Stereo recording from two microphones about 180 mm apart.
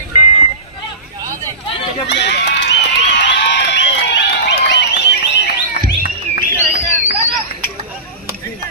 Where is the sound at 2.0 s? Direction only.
75° left (ahead or behind).